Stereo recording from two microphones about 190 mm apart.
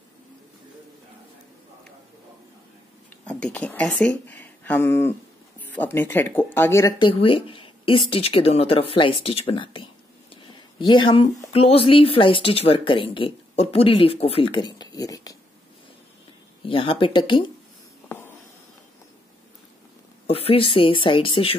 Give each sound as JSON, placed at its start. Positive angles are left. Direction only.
{"t": 3.3, "sound": "a woman's voice", "side_deg": 5}
{"t": 10.3, "sound": "a sound", "side_deg": 25}
{"t": 11.4, "sound": "a woman's voice", "side_deg": 30}
{"t": 16.6, "sound": "a woman's voice", "side_deg": 30}
{"t": 18.0, "sound": "a sound", "side_deg": 10}
{"t": 20.2, "sound": "a woman's voice", "side_deg": 30}